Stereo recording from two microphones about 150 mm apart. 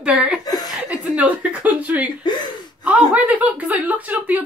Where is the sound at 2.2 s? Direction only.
30° left (ahead or behind).